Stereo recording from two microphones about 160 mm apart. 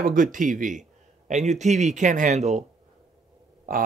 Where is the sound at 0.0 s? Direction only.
55° right (ahead or behind).